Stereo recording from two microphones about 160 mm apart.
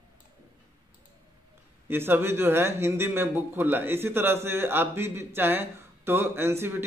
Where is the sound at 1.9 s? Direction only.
15° right (ahead or behind).